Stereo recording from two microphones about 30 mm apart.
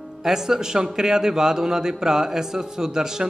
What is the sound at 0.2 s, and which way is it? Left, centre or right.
A man's voice, centre.